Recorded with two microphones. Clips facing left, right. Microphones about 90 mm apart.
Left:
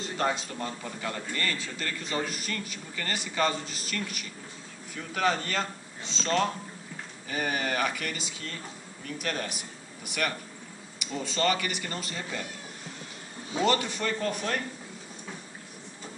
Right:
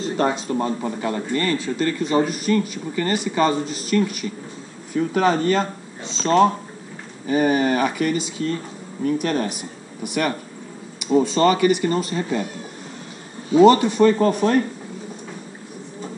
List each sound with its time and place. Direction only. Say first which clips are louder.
0.0 s a man's voice: right 8 dB; 25° right (ahead or behind)
4.9 s a man's voice: right 10 dB; 30° right (ahead or behind)
13.6 s a man's voice: right 14 dB; 25° right (ahead or behind)
14.1 s speech: right 13 dB; 35° right (ahead or behind)